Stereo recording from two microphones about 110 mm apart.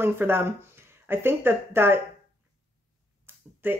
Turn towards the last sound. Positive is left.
turn(degrees=-20)  # may be behind; listen again after turning